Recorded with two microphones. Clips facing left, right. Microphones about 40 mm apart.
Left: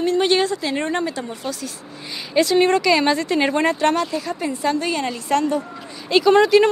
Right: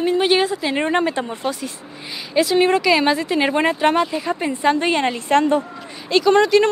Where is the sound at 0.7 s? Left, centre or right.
Right.